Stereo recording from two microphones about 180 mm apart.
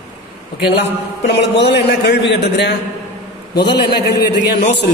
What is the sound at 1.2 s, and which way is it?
A woman's voice, 70° left (ahead or behind).